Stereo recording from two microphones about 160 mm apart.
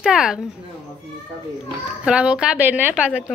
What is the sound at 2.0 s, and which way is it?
A woman's voice, 5° right (ahead or behind).